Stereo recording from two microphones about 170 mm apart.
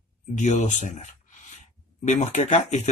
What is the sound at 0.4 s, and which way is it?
Speech, 45° left (ahead or behind).